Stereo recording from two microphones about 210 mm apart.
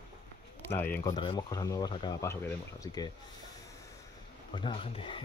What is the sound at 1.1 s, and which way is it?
Speech, 25° left (ahead or behind).